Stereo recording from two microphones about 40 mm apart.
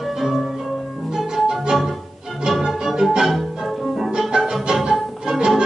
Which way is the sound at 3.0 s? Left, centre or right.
Centre.